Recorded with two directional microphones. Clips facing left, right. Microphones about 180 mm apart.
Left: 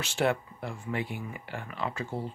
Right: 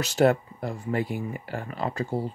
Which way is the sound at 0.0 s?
40° right (ahead or behind).